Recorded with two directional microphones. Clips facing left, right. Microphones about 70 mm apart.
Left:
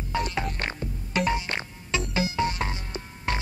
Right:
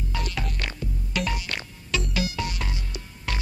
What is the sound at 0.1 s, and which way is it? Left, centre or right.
Music, left.